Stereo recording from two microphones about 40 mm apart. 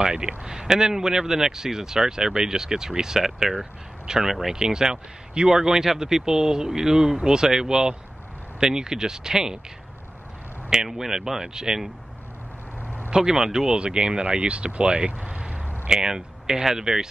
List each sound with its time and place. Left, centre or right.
0.0 s a man's voice: right
4.3 s a man's voice: centre
4.6 s a man's voice: centre
10.7 s a man's voice: centre
13.1 s a man's voice: centre